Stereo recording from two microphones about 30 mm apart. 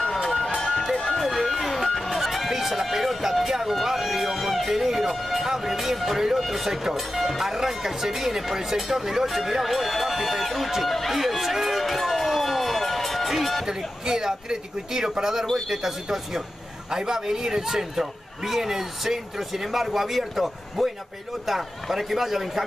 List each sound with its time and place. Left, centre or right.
1.1 s a man's voice: centre
9.3 s speech: centre
11.6 s music: centre
13.7 s a man's voice: centre